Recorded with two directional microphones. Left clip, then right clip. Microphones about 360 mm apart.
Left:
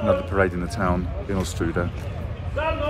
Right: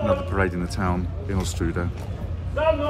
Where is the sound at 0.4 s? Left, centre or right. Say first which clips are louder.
Left 3 dB; centre.